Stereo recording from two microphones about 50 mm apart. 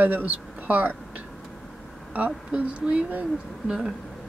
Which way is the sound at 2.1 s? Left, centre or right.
Right.